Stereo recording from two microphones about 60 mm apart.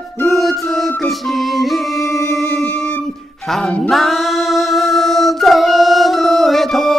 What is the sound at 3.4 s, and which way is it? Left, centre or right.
Music, centre.